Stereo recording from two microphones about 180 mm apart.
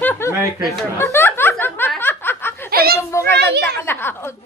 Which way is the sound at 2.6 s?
55° right (ahead or behind).